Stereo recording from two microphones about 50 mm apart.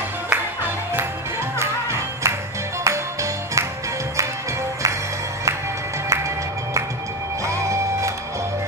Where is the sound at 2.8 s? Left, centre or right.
Right.